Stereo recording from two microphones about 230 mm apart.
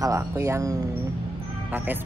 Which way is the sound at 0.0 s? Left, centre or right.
Centre.